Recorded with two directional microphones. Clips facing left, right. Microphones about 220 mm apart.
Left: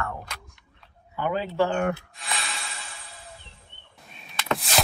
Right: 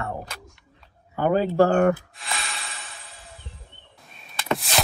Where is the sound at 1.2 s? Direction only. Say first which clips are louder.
Right 6 dB; 45° right (ahead or behind).